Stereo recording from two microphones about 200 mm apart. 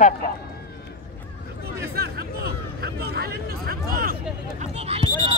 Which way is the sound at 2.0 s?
50° right (ahead or behind).